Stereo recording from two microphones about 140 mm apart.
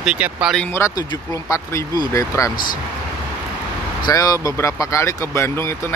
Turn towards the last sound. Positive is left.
turn(degrees=20)  # may be behind; listen again after turning